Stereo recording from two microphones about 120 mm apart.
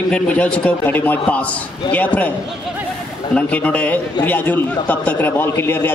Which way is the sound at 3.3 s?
10° left (ahead or behind).